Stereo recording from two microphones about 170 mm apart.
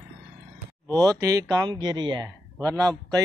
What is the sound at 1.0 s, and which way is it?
Speech, 25° right (ahead or behind).